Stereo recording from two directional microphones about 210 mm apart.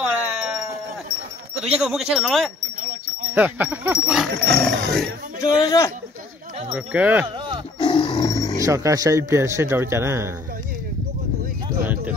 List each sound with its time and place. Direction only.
0.1 s a sound: centre (ahead or behind)
1.6 s speech: 5° right (ahead or behind)
5.4 s a man's voice: 15° left (ahead or behind)
6.7 s speech: 5° right (ahead or behind)
7.8 s roar: 25° left (ahead or behind)
8.5 s speech: 15° right (ahead or behind)